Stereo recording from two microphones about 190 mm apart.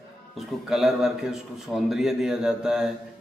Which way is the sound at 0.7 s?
Centre (ahead or behind).